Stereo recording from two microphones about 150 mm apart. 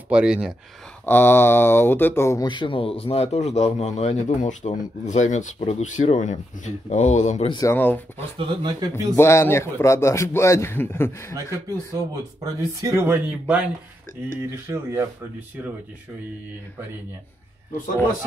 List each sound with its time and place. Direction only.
0.1 s speech: 5° right (ahead or behind)
1.0 s a man's voice: 15° left (ahead or behind)
2.4 s a man's voice: 30° left (ahead or behind); by 7.4 s 50° left (ahead or behind)
7.6 s a man's voice: 15° left (ahead or behind)
8.4 s speech: 30° right (ahead or behind)
8.9 s a man's voice: 15° left (ahead or behind)
11.3 s speech: 20° right (ahead or behind)